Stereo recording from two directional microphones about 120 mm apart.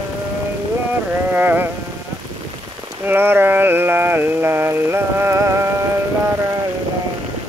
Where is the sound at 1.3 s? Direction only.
15° right (ahead or behind).